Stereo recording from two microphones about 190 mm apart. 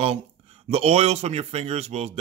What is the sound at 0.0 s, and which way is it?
Speech, 30° right (ahead or behind).